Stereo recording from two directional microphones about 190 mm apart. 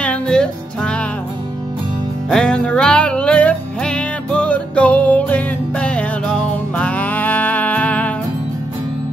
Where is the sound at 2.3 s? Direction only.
5° left (ahead or behind).